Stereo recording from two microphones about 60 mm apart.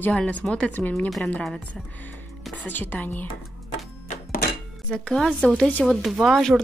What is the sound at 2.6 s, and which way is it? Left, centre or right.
Speech, left.